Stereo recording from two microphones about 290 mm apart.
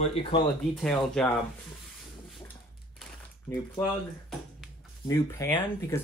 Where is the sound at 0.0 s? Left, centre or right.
Centre.